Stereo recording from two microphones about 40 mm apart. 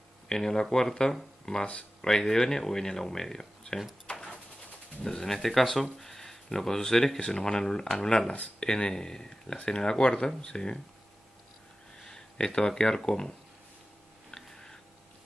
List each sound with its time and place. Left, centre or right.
0.3 s speech: centre
5.0 s speech: centre
12.0 s speech: centre
14.3 s a sound: centre